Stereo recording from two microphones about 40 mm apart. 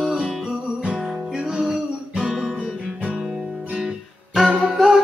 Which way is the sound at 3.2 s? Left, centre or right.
Centre.